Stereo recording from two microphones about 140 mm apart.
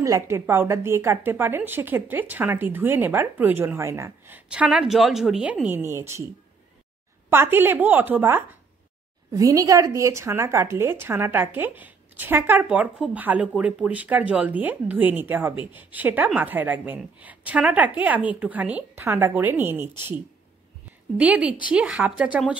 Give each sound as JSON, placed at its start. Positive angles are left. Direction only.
{"t": 0.0, "sound": "a woman's voice", "side_deg": -20}
{"t": 4.5, "sound": "a woman's voice", "side_deg": -5}
{"t": 7.2, "sound": "a woman's voice", "side_deg": -15}
{"t": 21.2, "sound": "a woman's voice", "side_deg": -10}